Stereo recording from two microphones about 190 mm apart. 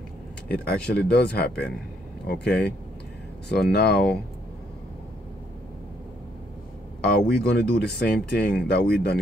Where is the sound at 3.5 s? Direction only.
60° left (ahead or behind).